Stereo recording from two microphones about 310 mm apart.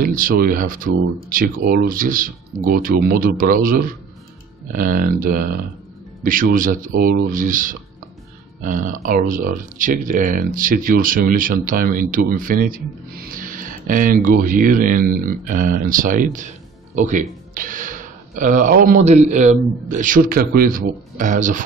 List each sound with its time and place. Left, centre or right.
0.0 s speech: right